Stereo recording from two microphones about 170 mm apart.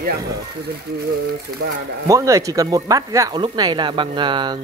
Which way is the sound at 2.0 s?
20° right (ahead or behind).